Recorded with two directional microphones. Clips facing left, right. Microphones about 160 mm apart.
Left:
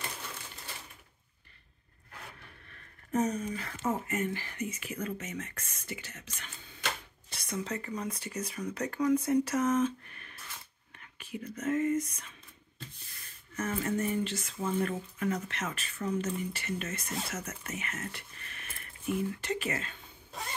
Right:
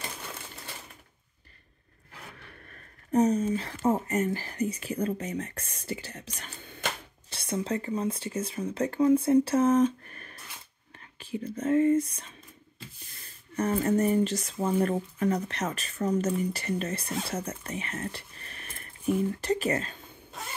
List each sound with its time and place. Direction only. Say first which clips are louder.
2.7 s speech: right 6 dB; 35° right (ahead or behind)
6.6 s a sound: right 5 dB; 55° right (ahead or behind)
7.2 s speech: right 6 dB; 30° right (ahead or behind)
13.6 s speech: right 7 dB; 35° right (ahead or behind)
20.3 s zipper: even; centre (ahead or behind)